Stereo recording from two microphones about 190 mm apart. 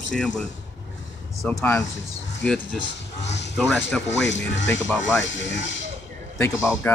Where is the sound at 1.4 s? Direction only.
Centre (ahead or behind).